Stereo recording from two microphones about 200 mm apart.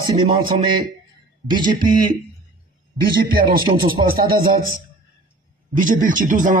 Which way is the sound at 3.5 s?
25° right (ahead or behind).